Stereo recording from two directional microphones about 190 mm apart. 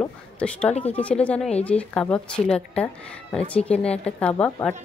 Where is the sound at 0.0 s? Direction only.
5° left (ahead or behind).